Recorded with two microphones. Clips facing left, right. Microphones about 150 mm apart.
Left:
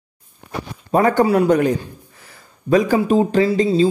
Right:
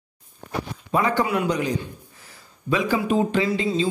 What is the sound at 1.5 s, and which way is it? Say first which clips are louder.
Speech: left 8 dB; 55° left (ahead or behind).